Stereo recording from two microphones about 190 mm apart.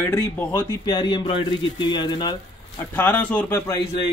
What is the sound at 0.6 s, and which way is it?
Speech, 20° left (ahead or behind).